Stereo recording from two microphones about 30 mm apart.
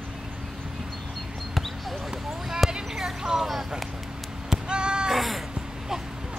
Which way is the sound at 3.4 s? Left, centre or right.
Centre.